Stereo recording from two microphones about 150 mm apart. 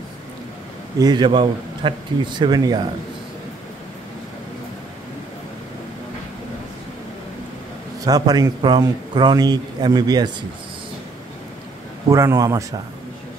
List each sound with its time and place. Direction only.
0.9 s a man's voice: 30° right (ahead or behind)
8.0 s a man's voice: 25° right (ahead or behind)
12.1 s a man's voice: 20° right (ahead or behind)